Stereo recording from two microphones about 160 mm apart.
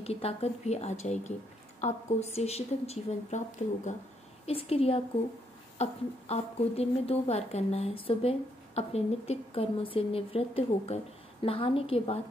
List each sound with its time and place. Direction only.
0.0 s a woman's voice: 40° left (ahead or behind)
4.5 s a woman's voice: 35° left (ahead or behind)